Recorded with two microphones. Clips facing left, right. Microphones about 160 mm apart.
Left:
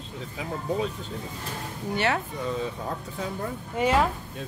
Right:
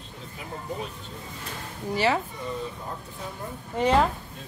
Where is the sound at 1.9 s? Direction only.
Centre (ahead or behind).